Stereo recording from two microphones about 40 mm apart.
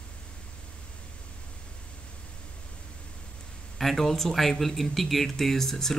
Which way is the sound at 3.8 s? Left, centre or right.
Centre.